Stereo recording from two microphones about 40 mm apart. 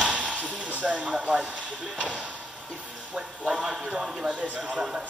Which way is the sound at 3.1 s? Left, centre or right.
Centre.